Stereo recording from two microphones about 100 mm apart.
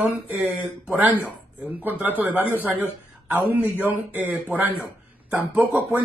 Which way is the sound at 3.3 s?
15° right (ahead or behind).